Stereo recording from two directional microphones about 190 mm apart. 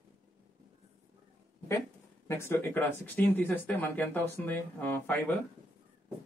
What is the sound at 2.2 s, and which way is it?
Speech, 15° left (ahead or behind).